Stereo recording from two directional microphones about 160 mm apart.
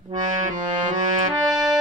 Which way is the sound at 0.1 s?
50° right (ahead or behind).